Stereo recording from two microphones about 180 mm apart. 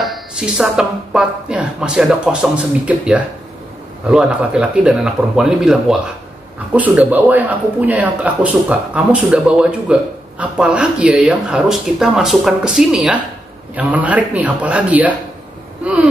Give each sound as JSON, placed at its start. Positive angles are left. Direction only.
{"t": 0.0, "sound": "speech", "side_deg": 0}